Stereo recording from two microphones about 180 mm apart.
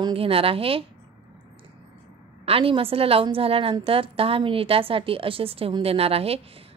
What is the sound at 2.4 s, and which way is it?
A woman's voice, 30° right (ahead or behind).